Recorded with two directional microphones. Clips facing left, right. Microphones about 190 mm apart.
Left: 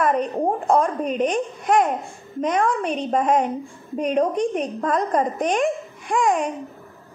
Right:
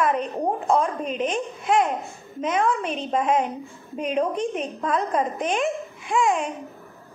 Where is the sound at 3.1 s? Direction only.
40° left (ahead or behind).